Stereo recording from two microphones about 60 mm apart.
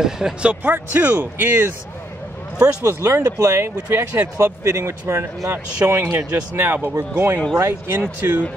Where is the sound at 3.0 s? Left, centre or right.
Right.